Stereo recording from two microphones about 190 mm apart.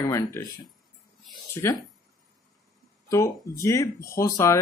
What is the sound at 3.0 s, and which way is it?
Speech, 15° left (ahead or behind).